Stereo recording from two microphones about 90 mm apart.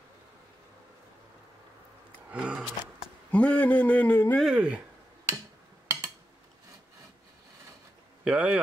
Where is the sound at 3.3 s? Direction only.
15° left (ahead or behind).